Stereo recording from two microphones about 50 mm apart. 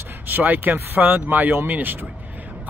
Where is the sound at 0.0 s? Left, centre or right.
Right.